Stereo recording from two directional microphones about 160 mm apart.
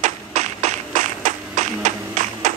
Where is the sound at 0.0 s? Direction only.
45° right (ahead or behind).